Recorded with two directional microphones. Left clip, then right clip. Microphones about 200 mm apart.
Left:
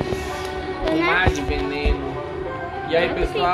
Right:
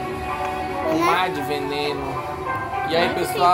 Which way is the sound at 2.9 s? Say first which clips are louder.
Left 2 dB; 40° right (ahead or behind).